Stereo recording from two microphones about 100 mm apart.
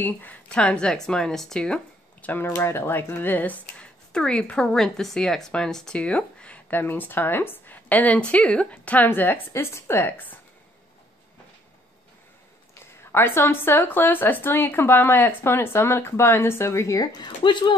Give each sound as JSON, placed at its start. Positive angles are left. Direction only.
{"t": 0.0, "sound": "speech", "side_deg": 15}
{"t": 13.0, "sound": "a woman's voice", "side_deg": 25}
{"t": 17.4, "sound": "speech", "side_deg": 50}